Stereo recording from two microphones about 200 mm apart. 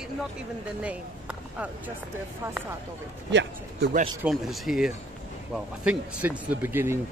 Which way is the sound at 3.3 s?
65° right (ahead or behind).